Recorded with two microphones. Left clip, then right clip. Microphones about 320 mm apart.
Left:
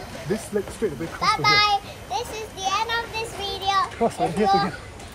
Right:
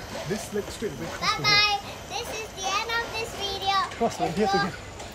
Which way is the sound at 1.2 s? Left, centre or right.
Centre.